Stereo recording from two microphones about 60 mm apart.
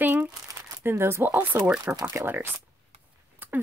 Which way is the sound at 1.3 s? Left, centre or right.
Right.